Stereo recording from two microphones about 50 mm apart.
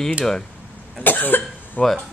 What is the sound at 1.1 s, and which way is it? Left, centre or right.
Cough, left.